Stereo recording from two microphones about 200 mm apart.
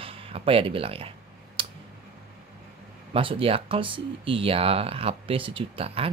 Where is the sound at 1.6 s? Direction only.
25° right (ahead or behind).